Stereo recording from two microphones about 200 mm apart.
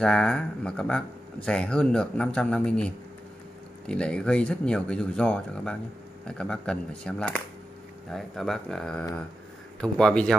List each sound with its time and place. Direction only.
0.0 s speech: 5° left (ahead or behind)